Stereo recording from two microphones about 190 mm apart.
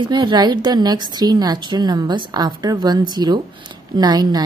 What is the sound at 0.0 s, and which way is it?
Speech, 25° right (ahead or behind).